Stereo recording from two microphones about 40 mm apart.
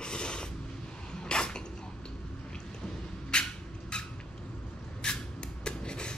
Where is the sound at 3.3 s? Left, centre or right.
Left.